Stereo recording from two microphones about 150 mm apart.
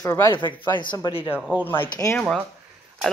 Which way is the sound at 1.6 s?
15° left (ahead or behind).